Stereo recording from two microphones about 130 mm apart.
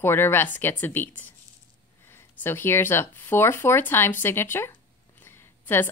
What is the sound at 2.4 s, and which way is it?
Speech, 15° left (ahead or behind).